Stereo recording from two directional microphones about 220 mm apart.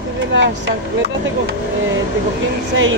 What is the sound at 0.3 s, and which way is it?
Speech, 55° right (ahead or behind).